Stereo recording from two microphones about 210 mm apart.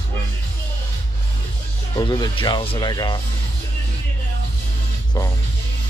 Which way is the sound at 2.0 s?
20° left (ahead or behind).